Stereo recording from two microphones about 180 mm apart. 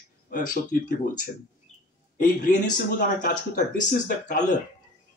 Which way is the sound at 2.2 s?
50° left (ahead or behind).